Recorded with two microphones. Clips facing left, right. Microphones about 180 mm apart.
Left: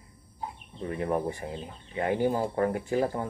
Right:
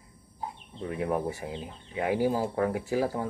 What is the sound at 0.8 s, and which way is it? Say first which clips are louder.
Speech: even; 5° right (ahead or behind).